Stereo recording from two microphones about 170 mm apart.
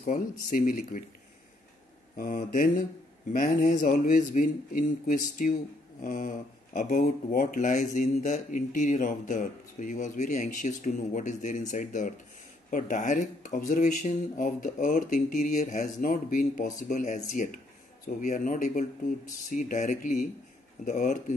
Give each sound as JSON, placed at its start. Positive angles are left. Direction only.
{"t": 0.5, "sound": "speech", "side_deg": 55}
{"t": 2.1, "sound": "speech", "side_deg": 55}